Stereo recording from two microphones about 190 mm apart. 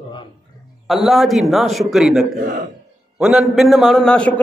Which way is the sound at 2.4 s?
40° right (ahead or behind).